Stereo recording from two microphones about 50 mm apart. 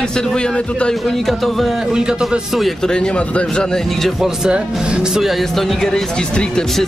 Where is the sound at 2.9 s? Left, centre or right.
Centre.